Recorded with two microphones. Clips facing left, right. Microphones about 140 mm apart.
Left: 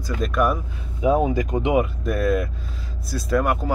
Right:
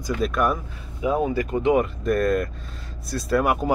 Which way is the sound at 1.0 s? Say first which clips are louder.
Left 3 dB; 25° left (ahead or behind).